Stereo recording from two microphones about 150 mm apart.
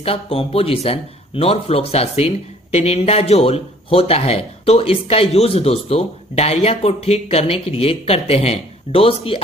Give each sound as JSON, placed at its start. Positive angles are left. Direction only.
{"t": 0.0, "sound": "speech", "side_deg": 40}